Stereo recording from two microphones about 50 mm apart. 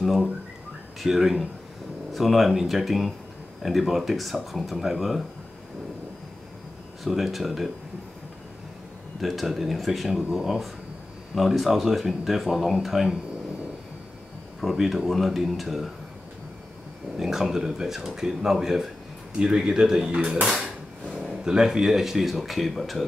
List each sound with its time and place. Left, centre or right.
1.0 s speech: centre
2.1 s speech: centre
7.1 s speech: centre
9.2 s speech: centre
14.7 s speech: centre
17.2 s speech: centre
20.1 s speech: right
21.3 s speech: centre